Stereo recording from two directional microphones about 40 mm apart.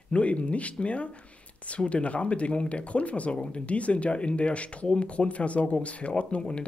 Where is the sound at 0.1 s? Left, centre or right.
Left.